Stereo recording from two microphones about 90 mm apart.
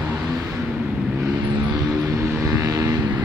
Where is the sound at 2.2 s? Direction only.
35° right (ahead or behind).